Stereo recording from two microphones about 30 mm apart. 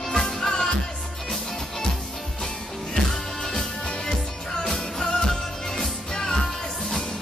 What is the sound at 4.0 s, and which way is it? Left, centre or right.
Music, left.